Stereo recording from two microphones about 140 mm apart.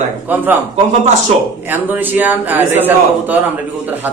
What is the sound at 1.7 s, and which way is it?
Speech, 15° right (ahead or behind).